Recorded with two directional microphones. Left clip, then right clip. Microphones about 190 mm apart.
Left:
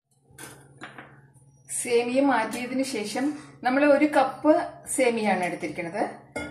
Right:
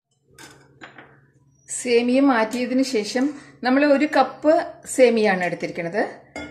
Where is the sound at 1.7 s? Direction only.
50° right (ahead or behind).